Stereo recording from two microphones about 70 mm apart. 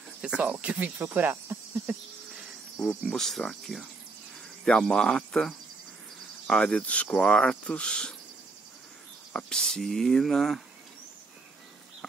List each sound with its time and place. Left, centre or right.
0.2 s speech: centre
3.1 s speech: centre
9.4 s speech: centre